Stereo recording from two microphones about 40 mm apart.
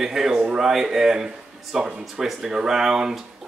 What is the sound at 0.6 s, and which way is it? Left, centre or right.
Speech, centre.